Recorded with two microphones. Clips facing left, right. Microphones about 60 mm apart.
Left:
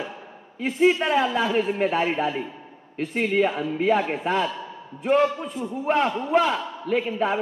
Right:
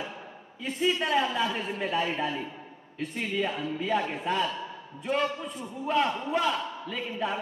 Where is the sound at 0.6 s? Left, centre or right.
Left.